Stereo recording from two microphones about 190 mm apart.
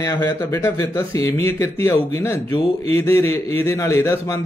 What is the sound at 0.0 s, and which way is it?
A man's voice, 15° left (ahead or behind).